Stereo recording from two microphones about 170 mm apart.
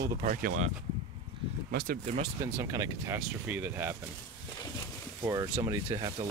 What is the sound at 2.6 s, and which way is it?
Speech, 15° right (ahead or behind).